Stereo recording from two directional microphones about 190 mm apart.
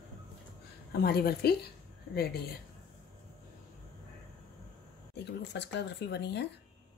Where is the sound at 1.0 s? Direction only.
55° left (ahead or behind).